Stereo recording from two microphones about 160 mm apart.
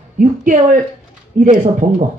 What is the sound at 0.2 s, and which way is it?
A man's voice, 55° right (ahead or behind).